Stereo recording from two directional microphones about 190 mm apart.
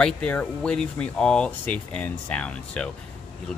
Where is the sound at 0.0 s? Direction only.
5° left (ahead or behind).